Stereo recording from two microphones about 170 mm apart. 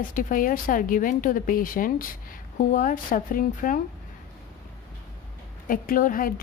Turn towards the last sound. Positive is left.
turn(degrees=55)  # may be behind; listen again after turning